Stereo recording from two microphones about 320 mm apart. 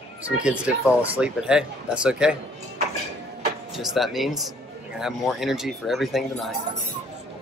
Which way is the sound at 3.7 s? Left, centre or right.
Centre.